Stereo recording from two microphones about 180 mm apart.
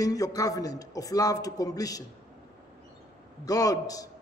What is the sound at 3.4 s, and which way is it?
Speech, 20° left (ahead or behind).